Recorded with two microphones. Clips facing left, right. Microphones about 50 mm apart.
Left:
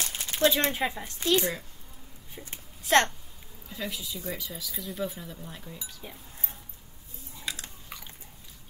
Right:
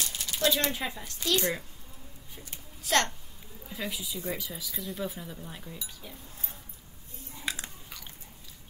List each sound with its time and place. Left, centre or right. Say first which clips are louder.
0.0 s speech: left 4 dB; left
2.3 s a sound: left 4 dB; left
3.6 s speech: even; centre
6.0 s speech: left 2 dB; left
7.4 s chewing: right 2 dB; centre